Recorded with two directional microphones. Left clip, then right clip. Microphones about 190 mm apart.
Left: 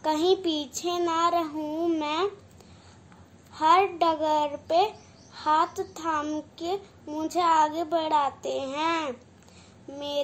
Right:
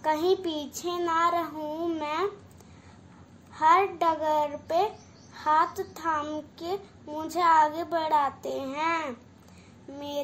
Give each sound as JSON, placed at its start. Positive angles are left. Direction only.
{"t": 0.0, "sound": "a child's voice", "side_deg": 10}
{"t": 3.5, "sound": "a child's voice", "side_deg": 10}